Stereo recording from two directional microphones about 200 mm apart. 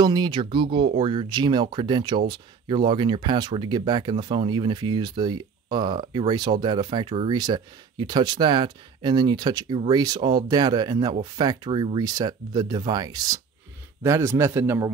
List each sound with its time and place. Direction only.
0.0 s a man's voice: 20° right (ahead or behind)